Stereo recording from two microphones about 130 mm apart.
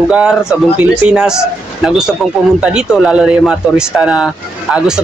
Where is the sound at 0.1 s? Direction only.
5° right (ahead or behind).